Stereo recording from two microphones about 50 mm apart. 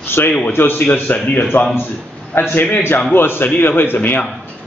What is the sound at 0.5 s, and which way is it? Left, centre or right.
Speech, left.